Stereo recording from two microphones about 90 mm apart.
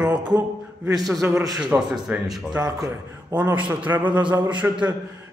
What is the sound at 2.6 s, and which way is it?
Speech, 45° right (ahead or behind).